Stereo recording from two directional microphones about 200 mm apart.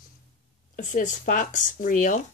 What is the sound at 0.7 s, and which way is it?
Speech, 40° left (ahead or behind).